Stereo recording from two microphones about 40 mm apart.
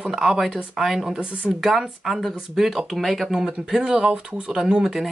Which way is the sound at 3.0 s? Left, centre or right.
Centre.